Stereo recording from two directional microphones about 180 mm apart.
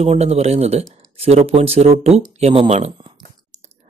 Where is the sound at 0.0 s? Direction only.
35° right (ahead or behind).